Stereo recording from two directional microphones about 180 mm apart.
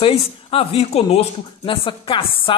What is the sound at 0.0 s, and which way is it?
A woman's voice, 30° left (ahead or behind).